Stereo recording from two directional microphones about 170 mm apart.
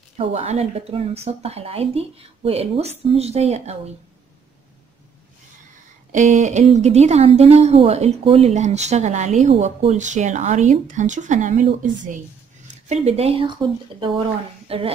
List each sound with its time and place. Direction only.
0.2 s speech: 40° right (ahead or behind)
6.1 s a woman's voice: 45° right (ahead or behind)